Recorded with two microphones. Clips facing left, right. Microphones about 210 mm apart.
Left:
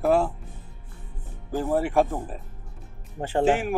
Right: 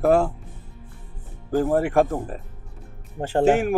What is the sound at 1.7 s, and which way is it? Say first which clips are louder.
Speech: right 1 dB; 50° right (ahead or behind).